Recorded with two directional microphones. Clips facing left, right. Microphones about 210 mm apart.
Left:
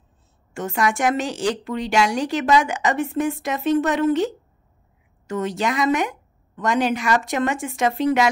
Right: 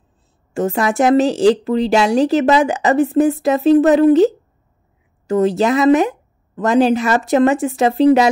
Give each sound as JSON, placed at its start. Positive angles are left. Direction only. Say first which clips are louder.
{"t": 0.6, "sound": "a woman's voice", "louder": "right 6 dB", "side_deg": -35}